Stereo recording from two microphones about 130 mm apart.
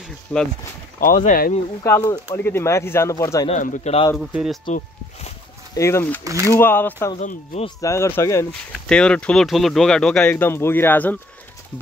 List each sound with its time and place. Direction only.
0.3 s speech: 10° left (ahead or behind)
0.9 s speech: 90° left
1.9 s speech: 20° left (ahead or behind)
3.4 s speech: 70° left (ahead or behind)
4.2 s speech: 5° right (ahead or behind)
5.8 s speech: 20° left (ahead or behind)
7.2 s speech: 65° left (ahead or behind)
7.8 s speech: 20° left (ahead or behind)
8.5 s speech: 5° left (ahead or behind)